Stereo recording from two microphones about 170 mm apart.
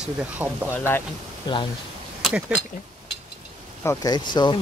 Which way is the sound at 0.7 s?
15° left (ahead or behind).